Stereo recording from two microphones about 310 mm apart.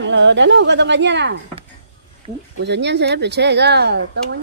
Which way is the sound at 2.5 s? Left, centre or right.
Right.